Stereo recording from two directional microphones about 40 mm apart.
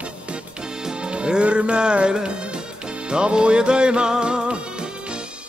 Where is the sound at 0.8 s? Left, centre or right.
Right.